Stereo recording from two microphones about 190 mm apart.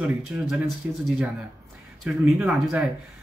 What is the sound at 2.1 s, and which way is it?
Speech, 5° right (ahead or behind).